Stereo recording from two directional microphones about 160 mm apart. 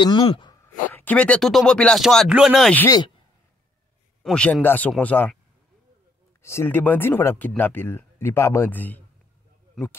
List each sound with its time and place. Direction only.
0.0 s speech: 30° left (ahead or behind)
0.9 s speech: 10° left (ahead or behind)
4.2 s speech: 5° left (ahead or behind)
6.4 s speech: 15° left (ahead or behind)